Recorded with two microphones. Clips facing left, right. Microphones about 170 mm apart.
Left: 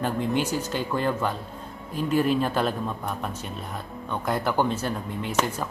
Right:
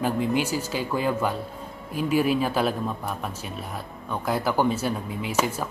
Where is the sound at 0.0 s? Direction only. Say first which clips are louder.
Right 1 dB; 5° right (ahead or behind).